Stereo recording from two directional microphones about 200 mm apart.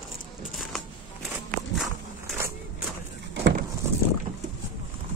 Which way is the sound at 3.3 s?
60° right (ahead or behind).